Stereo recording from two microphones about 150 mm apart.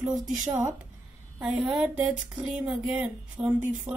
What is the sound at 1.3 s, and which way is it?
Speech, 5° right (ahead or behind).